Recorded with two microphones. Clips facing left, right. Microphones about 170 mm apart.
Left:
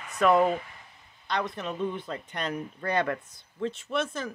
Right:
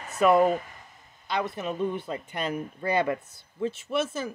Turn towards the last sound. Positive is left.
turn(degrees=-5)  # may be behind; listen again after turning